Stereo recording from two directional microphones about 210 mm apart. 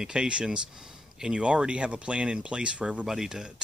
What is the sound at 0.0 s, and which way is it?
Speech, 5° right (ahead or behind).